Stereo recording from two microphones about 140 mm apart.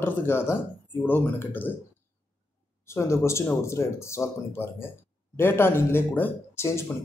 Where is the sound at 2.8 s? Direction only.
20° left (ahead or behind).